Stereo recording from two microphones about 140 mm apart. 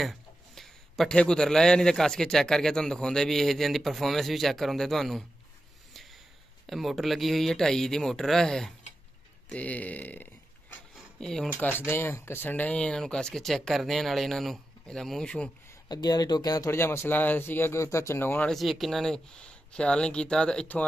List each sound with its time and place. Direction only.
0.0 s a man's voice: centre (ahead or behind)
6.7 s a man's voice: centre (ahead or behind)
15.9 s speech: 30° left (ahead or behind)
18.5 s a man's voice: centre (ahead or behind)